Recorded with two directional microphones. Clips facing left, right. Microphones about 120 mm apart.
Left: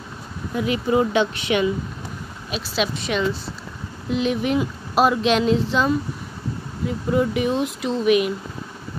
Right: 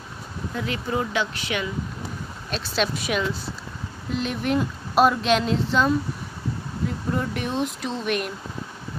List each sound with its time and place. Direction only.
0.6 s speech: 15° left (ahead or behind)
2.5 s speech: 5° left (ahead or behind)